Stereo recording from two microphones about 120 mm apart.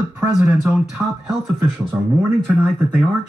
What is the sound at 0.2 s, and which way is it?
Speech, 15° right (ahead or behind).